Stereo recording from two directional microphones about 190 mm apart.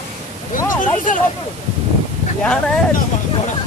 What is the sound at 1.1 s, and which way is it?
Speech, 45° left (ahead or behind).